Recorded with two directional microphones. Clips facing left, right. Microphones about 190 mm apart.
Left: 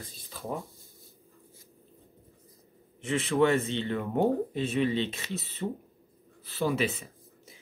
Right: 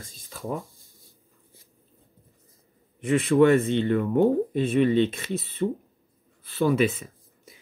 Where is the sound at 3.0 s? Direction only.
55° right (ahead or behind).